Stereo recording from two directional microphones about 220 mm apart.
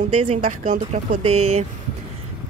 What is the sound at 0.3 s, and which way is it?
A woman's voice, 35° right (ahead or behind).